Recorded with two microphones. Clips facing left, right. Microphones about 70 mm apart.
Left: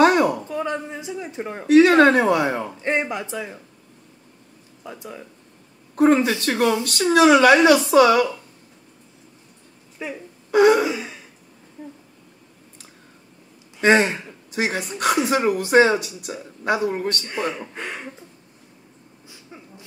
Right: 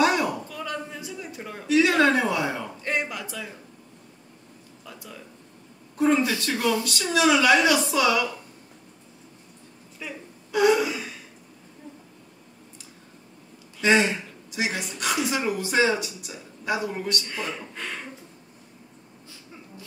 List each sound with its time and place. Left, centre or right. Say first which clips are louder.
0.0 s a sound: left 6 dB; left
0.5 s speech: left 7 dB; left
1.7 s speech: left 7 dB; left
2.8 s speech: left 5 dB; left
4.8 s speech: left 7 dB; left
5.9 s speech: left 5 dB; left
10.0 s speech: left 6 dB; left
10.5 s speech: left 5 dB; left
10.9 s speech: left 5 dB; left
13.7 s speech: left 4 dB; left
17.3 s speech: left 6 dB; left